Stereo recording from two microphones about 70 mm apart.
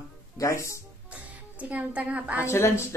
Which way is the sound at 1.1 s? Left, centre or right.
Centre.